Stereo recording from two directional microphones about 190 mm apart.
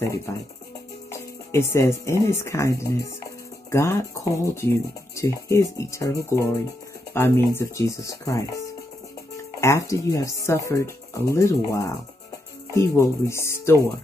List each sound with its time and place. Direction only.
1.1 s speech: 15° left (ahead or behind)